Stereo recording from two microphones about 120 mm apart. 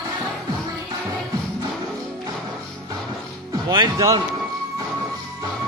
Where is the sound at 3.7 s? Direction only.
30° right (ahead or behind).